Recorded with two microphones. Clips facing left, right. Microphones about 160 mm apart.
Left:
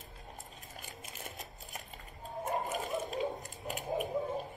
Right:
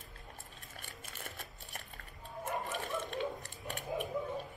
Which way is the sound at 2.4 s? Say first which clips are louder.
Left 3 dB; 35° left (ahead or behind).